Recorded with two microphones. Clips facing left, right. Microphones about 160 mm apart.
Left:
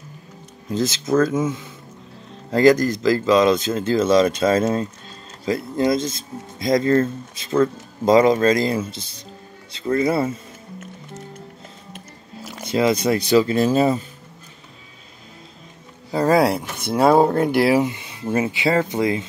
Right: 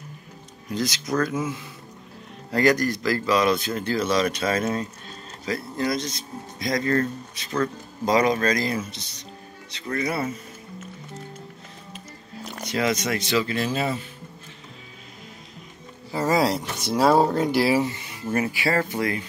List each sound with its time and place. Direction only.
0.7 s speech: 25° left (ahead or behind)
9.8 s speech: 25° left (ahead or behind)
12.6 s speech: 25° left (ahead or behind)
16.4 s speech: 55° left (ahead or behind)
17.1 s speech: centre (ahead or behind)
17.7 s speech: 20° left (ahead or behind)